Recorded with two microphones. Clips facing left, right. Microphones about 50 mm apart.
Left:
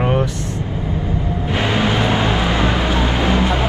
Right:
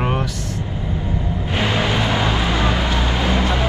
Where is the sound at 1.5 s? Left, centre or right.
Left.